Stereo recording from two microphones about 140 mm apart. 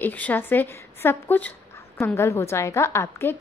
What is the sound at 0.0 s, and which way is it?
A woman's voice, 10° left (ahead or behind).